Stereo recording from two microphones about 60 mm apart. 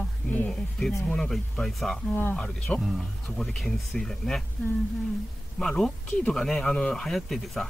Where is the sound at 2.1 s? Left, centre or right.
Left.